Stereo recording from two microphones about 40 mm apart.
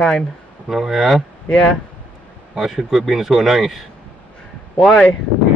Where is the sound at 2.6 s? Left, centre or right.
Centre.